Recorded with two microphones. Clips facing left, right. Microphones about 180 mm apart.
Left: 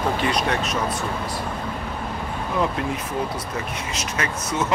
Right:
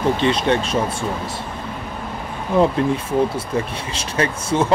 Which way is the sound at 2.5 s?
30° right (ahead or behind).